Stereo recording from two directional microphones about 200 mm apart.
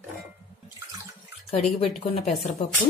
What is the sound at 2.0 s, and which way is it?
Speech, 30° left (ahead or behind).